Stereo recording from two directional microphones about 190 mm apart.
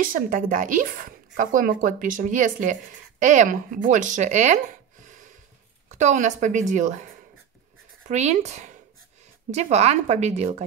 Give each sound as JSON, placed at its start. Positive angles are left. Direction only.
{"t": 0.0, "sound": "speech", "side_deg": -45}
{"t": 5.9, "sound": "a woman's voice", "side_deg": -40}
{"t": 8.1, "sound": "a woman's voice", "side_deg": -40}